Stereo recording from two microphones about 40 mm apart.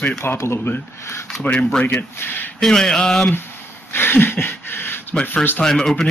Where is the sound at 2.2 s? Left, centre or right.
Left.